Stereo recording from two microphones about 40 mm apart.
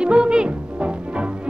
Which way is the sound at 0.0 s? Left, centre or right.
Right.